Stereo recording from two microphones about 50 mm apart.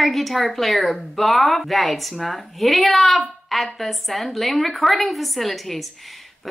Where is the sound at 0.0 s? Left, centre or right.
Centre.